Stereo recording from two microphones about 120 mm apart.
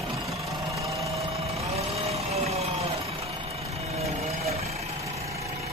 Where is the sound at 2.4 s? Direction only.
60° right (ahead or behind).